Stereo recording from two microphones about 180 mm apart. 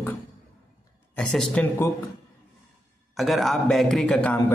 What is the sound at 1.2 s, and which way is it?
Speech, 5° left (ahead or behind).